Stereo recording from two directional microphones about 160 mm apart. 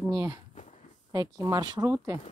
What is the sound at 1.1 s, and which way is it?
Speech, 25° right (ahead or behind).